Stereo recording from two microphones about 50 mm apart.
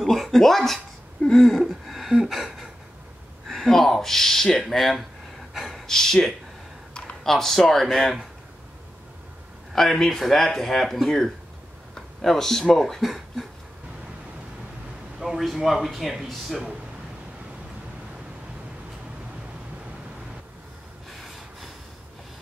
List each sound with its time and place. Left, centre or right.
0.0 s speech: centre
5.5 s gasp: centre
5.9 s speech: centre
6.9 s computer keyboard: centre
7.2 s speech: centre
9.7 s speech: centre
15.1 s speech: centre
21.1 s gasp: centre